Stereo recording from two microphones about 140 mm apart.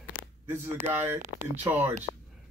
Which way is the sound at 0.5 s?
15° right (ahead or behind).